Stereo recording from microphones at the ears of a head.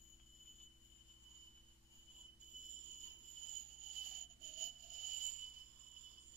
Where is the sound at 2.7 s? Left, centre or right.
Right.